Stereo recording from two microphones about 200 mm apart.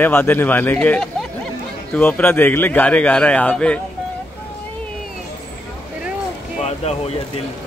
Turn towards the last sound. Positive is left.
turn(degrees=30)  # may be behind; listen again after turning